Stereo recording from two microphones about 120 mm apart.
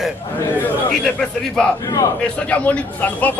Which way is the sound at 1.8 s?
30° left (ahead or behind).